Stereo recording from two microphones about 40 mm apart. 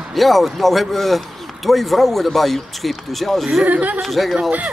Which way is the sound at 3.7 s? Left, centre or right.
Right.